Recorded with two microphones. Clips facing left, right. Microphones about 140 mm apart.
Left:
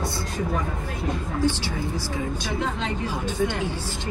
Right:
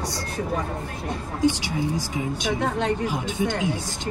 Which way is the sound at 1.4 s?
15° right (ahead or behind).